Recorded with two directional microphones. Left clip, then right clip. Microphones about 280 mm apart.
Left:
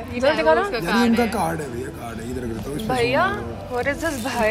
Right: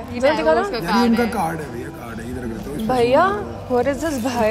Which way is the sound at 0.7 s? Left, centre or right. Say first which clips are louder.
Right 2 dB; right.